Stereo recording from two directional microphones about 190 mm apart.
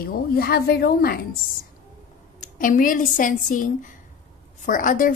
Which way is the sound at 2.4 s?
45° left (ahead or behind).